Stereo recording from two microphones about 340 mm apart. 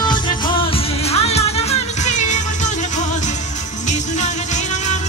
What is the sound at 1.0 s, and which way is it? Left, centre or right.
Music, centre.